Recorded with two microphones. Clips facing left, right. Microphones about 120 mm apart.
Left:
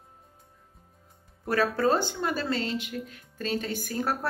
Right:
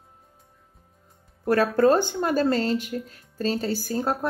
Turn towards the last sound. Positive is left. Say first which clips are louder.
# right 4 dB
turn(degrees=-30)  # may be behind; listen again after turning